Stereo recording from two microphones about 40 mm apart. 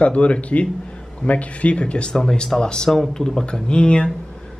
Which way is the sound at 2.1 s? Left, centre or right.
Centre.